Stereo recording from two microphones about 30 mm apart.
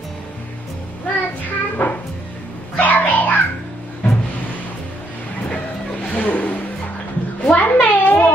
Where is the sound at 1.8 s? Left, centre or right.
Left.